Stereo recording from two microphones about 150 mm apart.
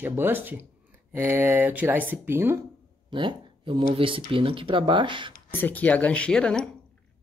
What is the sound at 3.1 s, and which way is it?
Speech, 35° right (ahead or behind).